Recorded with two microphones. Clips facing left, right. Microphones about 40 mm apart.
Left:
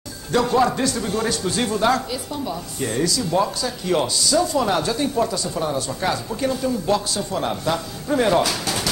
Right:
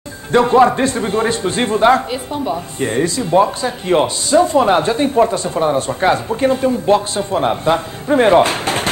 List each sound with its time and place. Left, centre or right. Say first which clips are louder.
0.3 s a man's voice: right 7 dB; right